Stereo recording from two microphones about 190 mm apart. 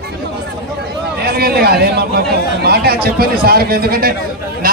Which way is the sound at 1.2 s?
55° right (ahead or behind).